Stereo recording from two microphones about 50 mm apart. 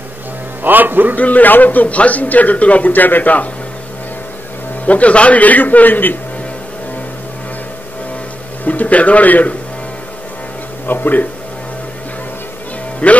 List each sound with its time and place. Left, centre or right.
0.7 s a man's voice: right
1.1 s a man's voice: left
4.8 s a man's voice: left
8.6 s a man's voice: left
10.9 s a man's voice: left
13.0 s speech: left